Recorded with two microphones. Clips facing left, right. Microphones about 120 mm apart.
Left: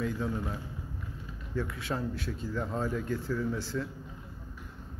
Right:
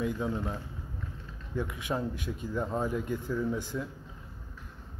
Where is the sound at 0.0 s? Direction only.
15° right (ahead or behind).